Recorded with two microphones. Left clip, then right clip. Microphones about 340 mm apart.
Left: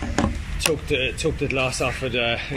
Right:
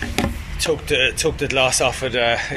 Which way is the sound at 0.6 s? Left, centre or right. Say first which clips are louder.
Right 4 dB; right.